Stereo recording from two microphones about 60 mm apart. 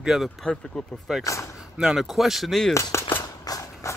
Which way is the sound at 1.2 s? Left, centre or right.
Left.